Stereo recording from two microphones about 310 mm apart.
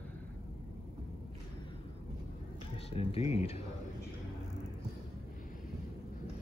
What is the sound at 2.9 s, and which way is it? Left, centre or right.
Speech, centre.